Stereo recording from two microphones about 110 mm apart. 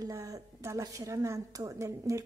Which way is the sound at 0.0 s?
30° right (ahead or behind).